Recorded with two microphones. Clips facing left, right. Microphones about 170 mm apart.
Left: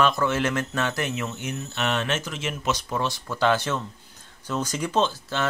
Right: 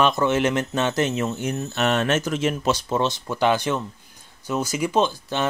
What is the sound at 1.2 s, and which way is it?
Speech, 35° right (ahead or behind).